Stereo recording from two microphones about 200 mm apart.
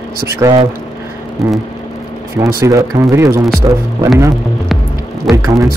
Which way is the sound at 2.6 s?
15° right (ahead or behind).